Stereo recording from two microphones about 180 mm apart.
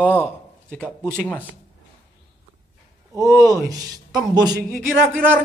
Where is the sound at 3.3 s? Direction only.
20° right (ahead or behind).